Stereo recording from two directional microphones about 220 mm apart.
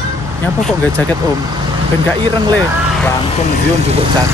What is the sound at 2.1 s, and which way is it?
Speech, 20° right (ahead or behind).